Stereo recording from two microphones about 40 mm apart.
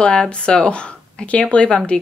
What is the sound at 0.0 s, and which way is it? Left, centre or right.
Speech, left.